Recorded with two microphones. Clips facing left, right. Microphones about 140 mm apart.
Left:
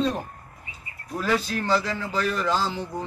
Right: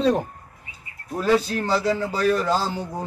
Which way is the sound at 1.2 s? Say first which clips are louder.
Right 4 dB; 35° right (ahead or behind).